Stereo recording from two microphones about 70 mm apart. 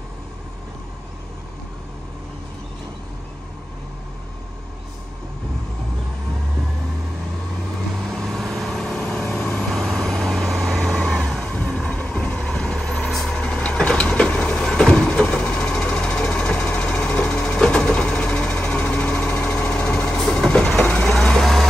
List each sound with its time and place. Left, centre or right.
8.1 s vehicle: centre
9.7 s vehicle: centre
11.5 s vehicle: centre
13.4 s vehicle: centre
15.2 s a sound: left
18.8 s engine: left
20.2 s train: centre
20.8 s vehicle: centre